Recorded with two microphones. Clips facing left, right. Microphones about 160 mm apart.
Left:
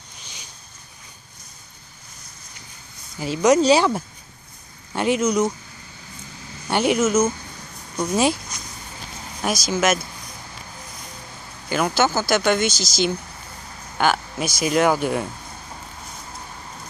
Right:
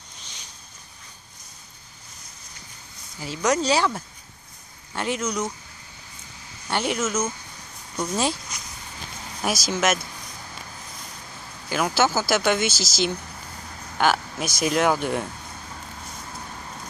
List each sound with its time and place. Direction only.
3.2 s speech: 20° left (ahead or behind)
6.7 s speech: 10° left (ahead or behind)
9.4 s speech: centre (ahead or behind)
11.7 s speech: centre (ahead or behind)